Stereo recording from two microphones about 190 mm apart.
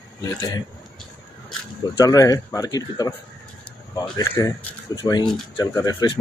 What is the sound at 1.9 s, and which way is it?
Speech, 20° left (ahead or behind).